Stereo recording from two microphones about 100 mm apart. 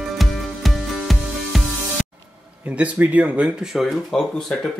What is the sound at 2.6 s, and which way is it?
Speech, 15° right (ahead or behind).